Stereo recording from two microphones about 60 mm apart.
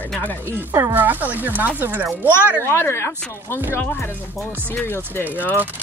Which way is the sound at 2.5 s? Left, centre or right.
Left.